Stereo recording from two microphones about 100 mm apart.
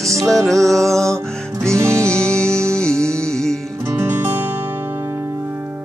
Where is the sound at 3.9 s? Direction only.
20° right (ahead or behind).